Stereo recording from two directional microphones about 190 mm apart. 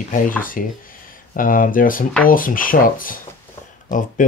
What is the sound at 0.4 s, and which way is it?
Speech, 45° left (ahead or behind).